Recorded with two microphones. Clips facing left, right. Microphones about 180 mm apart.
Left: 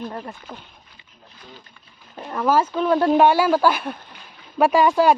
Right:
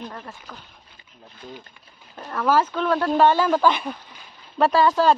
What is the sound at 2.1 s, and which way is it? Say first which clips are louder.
Speech: left 1 dB; 10° left (ahead or behind).